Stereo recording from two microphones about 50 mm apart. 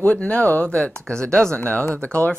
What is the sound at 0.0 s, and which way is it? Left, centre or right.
Speech, left.